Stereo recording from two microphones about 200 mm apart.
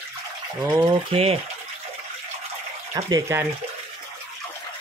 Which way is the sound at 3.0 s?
20° right (ahead or behind).